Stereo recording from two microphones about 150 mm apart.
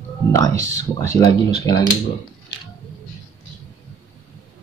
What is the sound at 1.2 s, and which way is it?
Speech, 90° left.